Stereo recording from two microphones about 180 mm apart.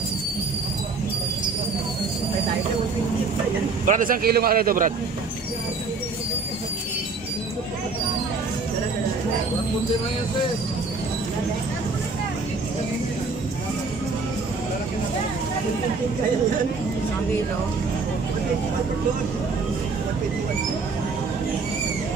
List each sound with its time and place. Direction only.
3.8 s a man's voice: 45° right (ahead or behind)